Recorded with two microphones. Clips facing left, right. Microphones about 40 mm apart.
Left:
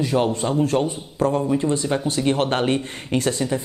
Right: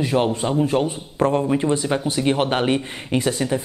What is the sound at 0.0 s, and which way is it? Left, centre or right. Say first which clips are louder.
Speech: right 1 dB; centre.